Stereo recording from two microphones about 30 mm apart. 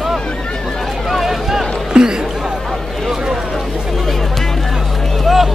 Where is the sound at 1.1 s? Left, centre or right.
Centre.